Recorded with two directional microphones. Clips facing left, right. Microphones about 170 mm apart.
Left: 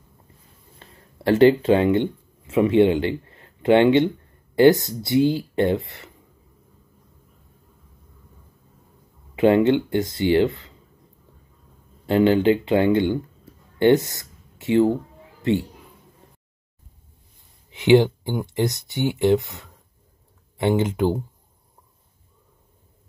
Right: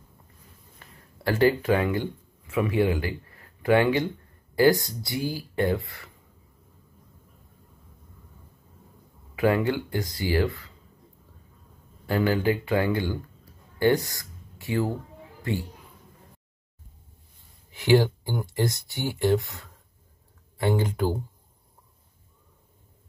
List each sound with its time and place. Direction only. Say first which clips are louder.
0.7 s speech: left 5 dB; 25° left (ahead or behind)
9.3 s speech: left 7 dB; 25° left (ahead or behind)
12.1 s speech: left 7 dB; 25° left (ahead or behind)
17.7 s speech: left 5 dB; 20° left (ahead or behind)